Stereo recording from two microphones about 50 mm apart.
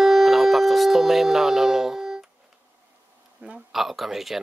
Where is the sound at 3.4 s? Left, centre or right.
Right.